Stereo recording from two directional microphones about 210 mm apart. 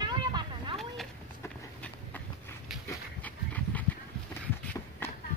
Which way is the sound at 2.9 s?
5° left (ahead or behind).